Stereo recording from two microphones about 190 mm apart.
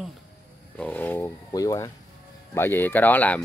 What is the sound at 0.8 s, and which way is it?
A woman's voice, 10° left (ahead or behind).